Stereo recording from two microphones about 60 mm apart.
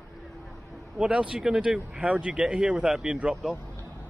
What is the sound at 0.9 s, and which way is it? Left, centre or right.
Speech, centre.